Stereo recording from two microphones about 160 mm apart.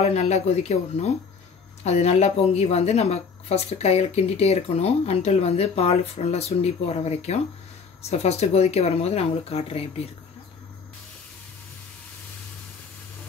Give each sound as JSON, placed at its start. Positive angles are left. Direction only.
{"t": 0.0, "sound": "speech", "side_deg": 45}